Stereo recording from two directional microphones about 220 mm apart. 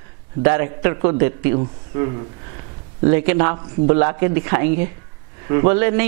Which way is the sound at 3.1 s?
15° right (ahead or behind).